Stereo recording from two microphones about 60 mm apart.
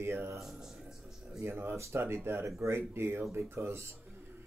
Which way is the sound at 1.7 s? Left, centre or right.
Right.